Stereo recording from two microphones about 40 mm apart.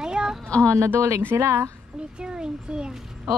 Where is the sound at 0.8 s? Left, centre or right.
Right.